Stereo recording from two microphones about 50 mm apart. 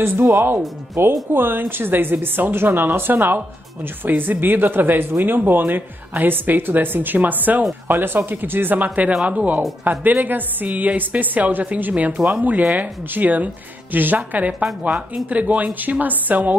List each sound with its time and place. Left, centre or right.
0.2 s a woman's voice: right
7.9 s a woman's voice: right
8.7 s speech: right
9.9 s speech: right
14.6 s speech: centre
15.2 s speech: right